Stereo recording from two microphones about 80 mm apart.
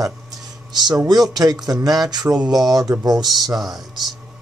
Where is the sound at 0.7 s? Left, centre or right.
Right.